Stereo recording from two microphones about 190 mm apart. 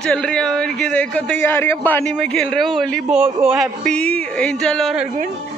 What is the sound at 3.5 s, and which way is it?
Speech, centre (ahead or behind).